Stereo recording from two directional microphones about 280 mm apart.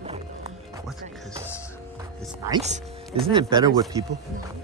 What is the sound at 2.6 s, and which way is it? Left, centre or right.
Speech, right.